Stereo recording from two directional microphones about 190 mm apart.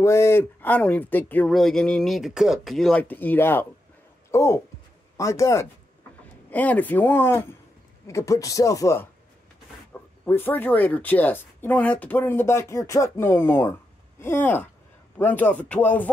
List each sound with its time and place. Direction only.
0.0 s speech: 15° left (ahead or behind)